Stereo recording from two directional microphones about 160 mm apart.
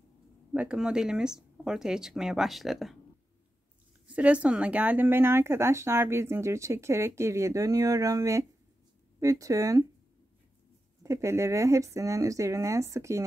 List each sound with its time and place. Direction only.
0.5 s speech: 5° right (ahead or behind)
4.1 s speech: 10° right (ahead or behind)
11.0 s speech: 20° right (ahead or behind)